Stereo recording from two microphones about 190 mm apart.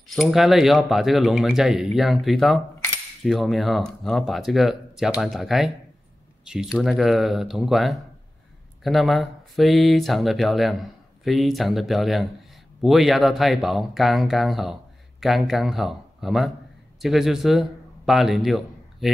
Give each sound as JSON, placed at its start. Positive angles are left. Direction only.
{"t": 0.1, "sound": "a man's voice", "side_deg": 0}